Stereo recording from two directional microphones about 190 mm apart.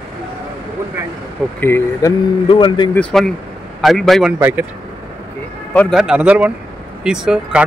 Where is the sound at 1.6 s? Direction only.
10° left (ahead or behind).